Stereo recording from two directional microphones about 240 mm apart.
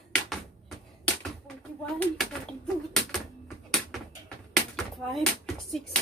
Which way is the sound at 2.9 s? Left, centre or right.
Centre.